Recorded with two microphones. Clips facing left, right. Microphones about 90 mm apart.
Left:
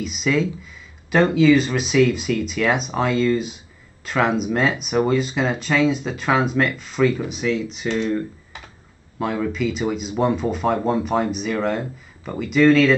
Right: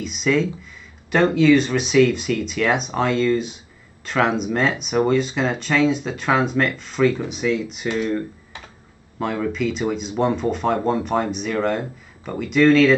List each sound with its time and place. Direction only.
0.0 s speech: centre (ahead or behind)
9.2 s speech: centre (ahead or behind)